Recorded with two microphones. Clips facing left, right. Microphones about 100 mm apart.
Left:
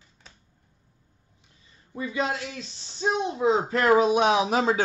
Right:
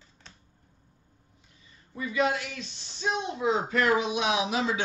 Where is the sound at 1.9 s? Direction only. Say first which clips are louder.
Right 1 dB; 30° left (ahead or behind).